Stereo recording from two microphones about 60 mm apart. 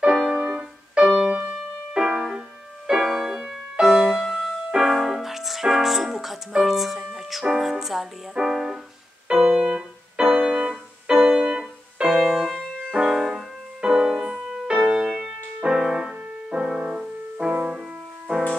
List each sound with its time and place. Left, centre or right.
0.0 s music: centre
4.2 s keyboard: centre
4.6 s music: centre
9.3 s keyboard: centre
11.6 s music: centre
12.9 s music: centre
14.3 s music: centre
14.7 s music: centre